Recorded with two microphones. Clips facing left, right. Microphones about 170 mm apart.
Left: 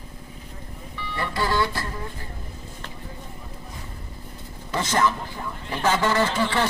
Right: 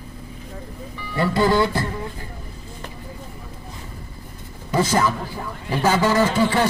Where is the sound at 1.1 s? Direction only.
20° right (ahead or behind).